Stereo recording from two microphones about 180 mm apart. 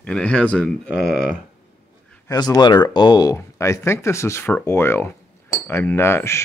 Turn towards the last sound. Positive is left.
turn(degrees=15)  # may be behind; listen again after turning